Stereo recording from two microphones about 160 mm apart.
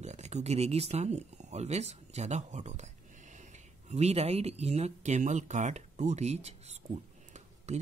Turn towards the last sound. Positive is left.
turn(degrees=-45)  # may be behind; listen again after turning